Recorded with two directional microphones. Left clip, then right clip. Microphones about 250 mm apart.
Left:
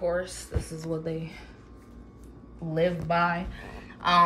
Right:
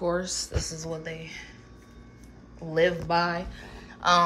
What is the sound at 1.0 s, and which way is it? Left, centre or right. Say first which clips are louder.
Speech: left 3 dB; centre.